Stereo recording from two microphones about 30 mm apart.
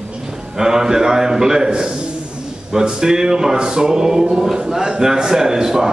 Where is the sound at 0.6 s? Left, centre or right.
Centre.